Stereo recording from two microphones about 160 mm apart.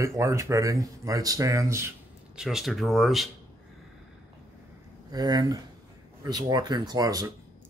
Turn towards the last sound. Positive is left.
turn(degrees=-25)  # may be behind; listen again after turning